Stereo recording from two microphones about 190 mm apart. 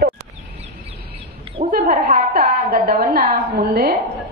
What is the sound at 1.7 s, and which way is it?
A woman's voice, 50° right (ahead or behind).